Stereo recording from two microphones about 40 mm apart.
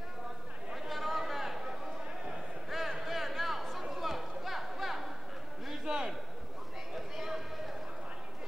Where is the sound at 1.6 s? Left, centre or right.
Centre.